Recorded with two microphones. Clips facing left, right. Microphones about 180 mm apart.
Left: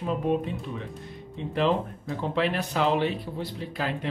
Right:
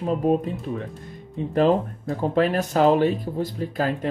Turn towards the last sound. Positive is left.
turn(degrees=-45)  # may be behind; listen again after turning